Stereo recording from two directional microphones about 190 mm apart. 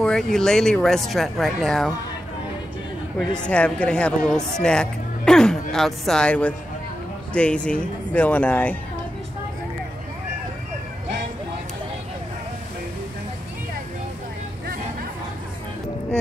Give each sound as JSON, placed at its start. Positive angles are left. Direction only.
{"t": 0.0, "sound": "speech", "side_deg": 5}
{"t": 3.2, "sound": "speech", "side_deg": 5}